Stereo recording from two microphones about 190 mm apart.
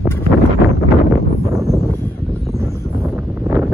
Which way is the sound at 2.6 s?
15° right (ahead or behind).